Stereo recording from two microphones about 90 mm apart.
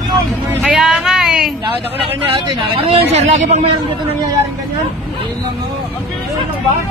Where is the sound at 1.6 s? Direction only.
90° right.